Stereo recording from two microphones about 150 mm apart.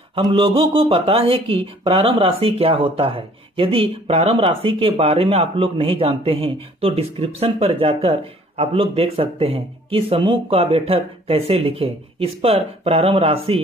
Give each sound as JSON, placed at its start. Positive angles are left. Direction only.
{"t": 0.6, "sound": "speech", "side_deg": -35}